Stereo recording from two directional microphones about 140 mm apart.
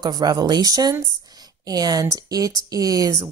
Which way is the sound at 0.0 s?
30° right (ahead or behind).